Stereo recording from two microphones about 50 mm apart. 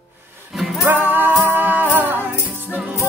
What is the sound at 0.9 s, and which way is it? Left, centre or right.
Music, right.